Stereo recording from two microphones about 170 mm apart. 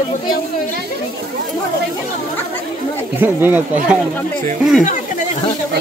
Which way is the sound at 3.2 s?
10° right (ahead or behind).